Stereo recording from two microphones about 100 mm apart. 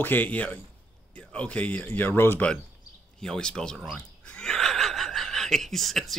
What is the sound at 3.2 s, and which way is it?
Speech, 5° left (ahead or behind).